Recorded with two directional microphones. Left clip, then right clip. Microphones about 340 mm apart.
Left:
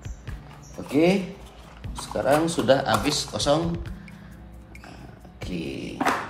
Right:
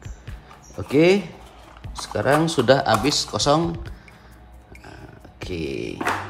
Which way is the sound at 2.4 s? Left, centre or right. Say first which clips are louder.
Right 3 dB; right.